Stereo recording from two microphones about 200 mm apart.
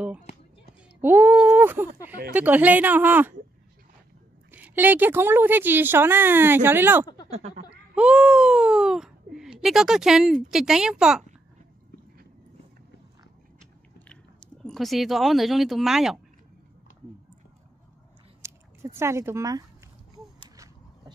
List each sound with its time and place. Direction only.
1.0 s a woman's voice: 10° right (ahead or behind)
4.5 s a woman's voice: 10° right (ahead or behind)
7.2 s speech: 30° right (ahead or behind)
7.9 s speech: 5° right (ahead or behind)
13.9 s speech: 5° left (ahead or behind)
18.4 s chewing: 15° right (ahead or behind)